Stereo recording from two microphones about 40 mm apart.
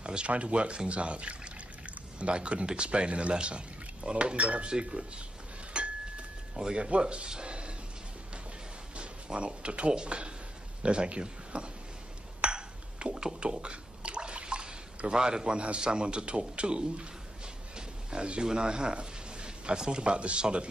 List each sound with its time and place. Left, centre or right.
0.0 s a man's voice: right
5.7 s a sound: right
6.5 s speech: right
8.9 s speech: right
12.4 s a sound: right
15.6 s a man's voice: right